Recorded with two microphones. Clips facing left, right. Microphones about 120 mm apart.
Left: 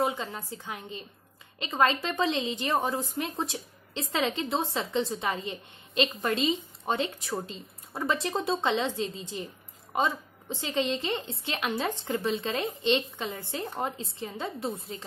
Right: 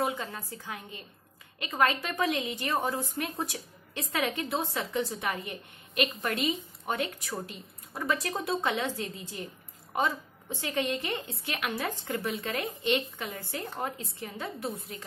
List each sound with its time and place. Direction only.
0.0 s a woman's voice: 20° left (ahead or behind)